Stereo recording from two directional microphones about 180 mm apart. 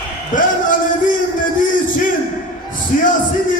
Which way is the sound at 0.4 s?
50° left (ahead or behind).